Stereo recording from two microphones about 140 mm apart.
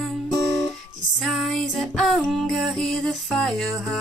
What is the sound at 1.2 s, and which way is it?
Music, centre (ahead or behind).